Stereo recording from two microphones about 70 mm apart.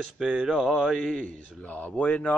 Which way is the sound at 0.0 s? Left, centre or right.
Centre.